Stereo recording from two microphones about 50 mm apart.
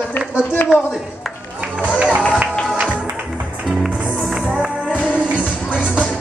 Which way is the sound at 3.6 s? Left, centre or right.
Centre.